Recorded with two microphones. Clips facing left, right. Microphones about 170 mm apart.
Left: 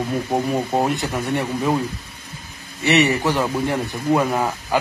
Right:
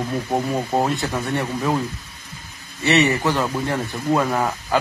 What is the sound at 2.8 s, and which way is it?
Speech, 15° left (ahead or behind).